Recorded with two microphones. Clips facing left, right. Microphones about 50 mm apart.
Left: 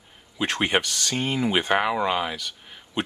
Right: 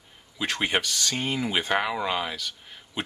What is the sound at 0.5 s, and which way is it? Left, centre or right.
Speech, centre.